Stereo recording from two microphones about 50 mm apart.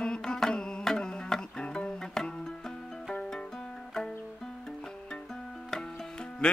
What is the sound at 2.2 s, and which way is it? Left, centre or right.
Music, centre.